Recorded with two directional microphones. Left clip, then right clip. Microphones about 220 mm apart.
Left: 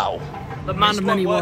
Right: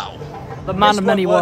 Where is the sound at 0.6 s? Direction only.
45° right (ahead or behind).